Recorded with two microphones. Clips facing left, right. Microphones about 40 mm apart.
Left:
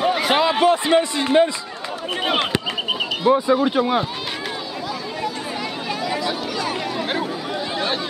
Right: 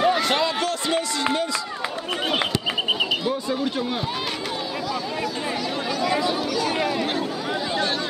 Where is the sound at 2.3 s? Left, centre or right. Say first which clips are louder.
Left 4 dB; centre.